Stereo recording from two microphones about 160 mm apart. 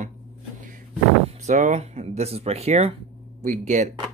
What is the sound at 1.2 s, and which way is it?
Speech, 50° right (ahead or behind).